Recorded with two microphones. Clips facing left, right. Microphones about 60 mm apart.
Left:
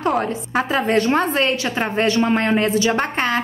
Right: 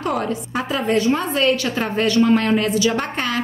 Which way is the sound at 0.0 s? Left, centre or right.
Left.